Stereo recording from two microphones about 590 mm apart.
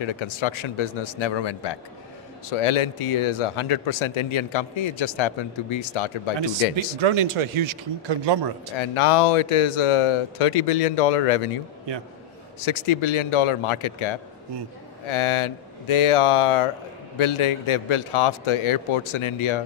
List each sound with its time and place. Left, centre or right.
0.0 s speech: left
2.5 s speech: left
7.0 s speech: right
8.7 s speech: left